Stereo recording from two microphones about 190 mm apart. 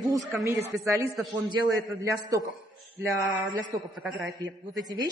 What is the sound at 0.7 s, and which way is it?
A man's voice, 15° right (ahead or behind).